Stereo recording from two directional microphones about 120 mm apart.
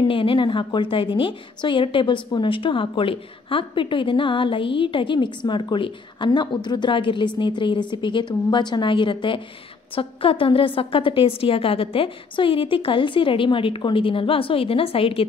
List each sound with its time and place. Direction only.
0.1 s a woman's voice: 45° left (ahead or behind)